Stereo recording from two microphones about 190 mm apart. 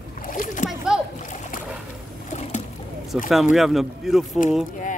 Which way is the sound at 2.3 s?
35° left (ahead or behind).